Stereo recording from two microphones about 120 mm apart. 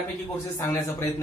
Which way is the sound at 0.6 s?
25° left (ahead or behind).